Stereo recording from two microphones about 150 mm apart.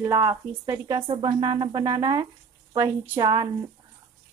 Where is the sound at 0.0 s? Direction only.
20° right (ahead or behind).